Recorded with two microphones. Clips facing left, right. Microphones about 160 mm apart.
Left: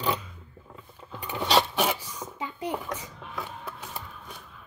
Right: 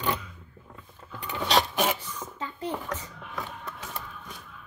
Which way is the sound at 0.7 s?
20° left (ahead or behind).